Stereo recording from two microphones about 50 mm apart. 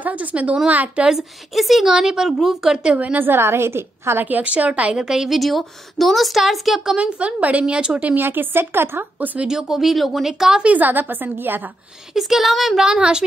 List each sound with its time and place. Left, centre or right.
0.0 s a woman's voice: right
1.0 s a woman's voice: centre
3.0 s a woman's voice: right
3.3 s a woman's voice: right
4.2 s a woman's voice: right
4.9 s a woman's voice: centre
5.4 s a woman's voice: centre
7.0 s a woman's voice: right
8.2 s a woman's voice: right
9.5 s a woman's voice: centre
10.6 s a woman's voice: right
12.1 s a woman's voice: centre
12.8 s a woman's voice: centre